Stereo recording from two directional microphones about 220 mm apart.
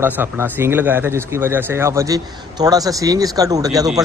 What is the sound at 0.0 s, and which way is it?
A man's voice, 10° right (ahead or behind).